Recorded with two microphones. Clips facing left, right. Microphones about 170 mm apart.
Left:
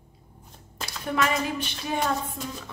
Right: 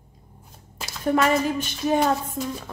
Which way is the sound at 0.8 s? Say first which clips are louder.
Right 5 dB; 45° right (ahead or behind).